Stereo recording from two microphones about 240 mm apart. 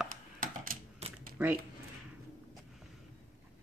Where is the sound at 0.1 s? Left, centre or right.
Right.